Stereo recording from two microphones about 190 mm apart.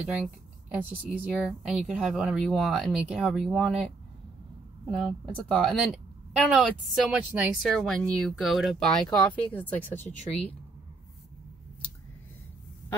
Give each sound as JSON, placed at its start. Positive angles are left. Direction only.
{"t": 0.0, "sound": "speech", "side_deg": -5}
{"t": 10.1, "sound": "speech", "side_deg": 35}